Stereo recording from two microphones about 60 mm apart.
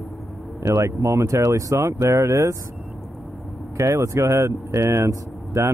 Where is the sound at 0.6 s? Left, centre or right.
Right.